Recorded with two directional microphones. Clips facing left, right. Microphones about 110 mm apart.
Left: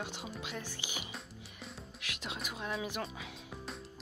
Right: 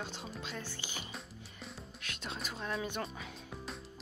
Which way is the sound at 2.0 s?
10° left (ahead or behind).